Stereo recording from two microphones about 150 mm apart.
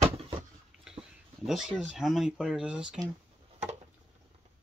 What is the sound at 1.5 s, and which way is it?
Speech, 5° right (ahead or behind).